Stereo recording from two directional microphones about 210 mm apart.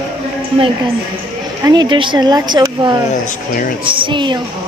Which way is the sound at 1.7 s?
20° right (ahead or behind).